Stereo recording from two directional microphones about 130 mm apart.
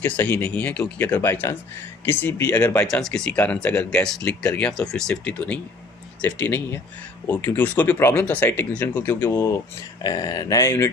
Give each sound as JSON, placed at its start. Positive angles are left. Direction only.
{"t": 0.0, "sound": "speech", "side_deg": 15}